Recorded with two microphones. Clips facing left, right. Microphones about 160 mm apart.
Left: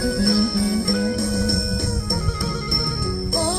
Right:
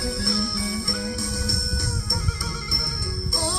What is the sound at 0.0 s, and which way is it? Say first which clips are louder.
Music: left 8 dB; 55° left (ahead or behind).